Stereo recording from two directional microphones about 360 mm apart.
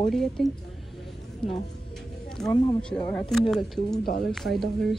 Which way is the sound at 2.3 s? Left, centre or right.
Centre.